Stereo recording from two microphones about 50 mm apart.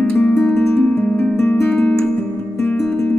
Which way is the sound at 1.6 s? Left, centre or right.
Left.